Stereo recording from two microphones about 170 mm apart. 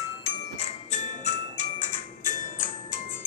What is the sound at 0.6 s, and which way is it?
Music, 45° left (ahead or behind).